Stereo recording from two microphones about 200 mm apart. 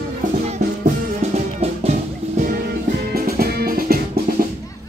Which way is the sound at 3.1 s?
50° right (ahead or behind).